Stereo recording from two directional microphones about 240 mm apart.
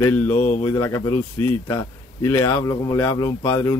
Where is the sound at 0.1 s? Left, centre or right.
Centre.